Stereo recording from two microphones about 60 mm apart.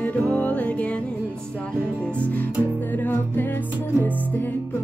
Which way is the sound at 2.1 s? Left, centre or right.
Left.